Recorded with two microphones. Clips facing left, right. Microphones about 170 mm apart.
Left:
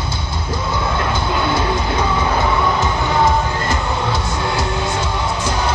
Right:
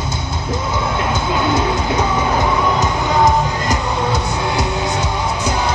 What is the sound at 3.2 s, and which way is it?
Music, 20° right (ahead or behind).